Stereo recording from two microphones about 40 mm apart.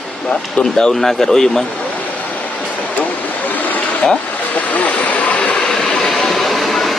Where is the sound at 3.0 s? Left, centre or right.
Left.